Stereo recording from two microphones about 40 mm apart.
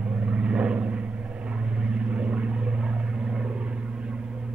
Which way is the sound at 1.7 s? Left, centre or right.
Right.